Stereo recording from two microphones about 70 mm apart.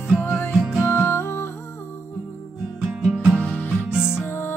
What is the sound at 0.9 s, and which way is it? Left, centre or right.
Music, left.